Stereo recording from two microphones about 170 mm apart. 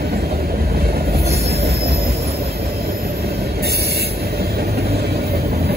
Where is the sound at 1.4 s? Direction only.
40° right (ahead or behind).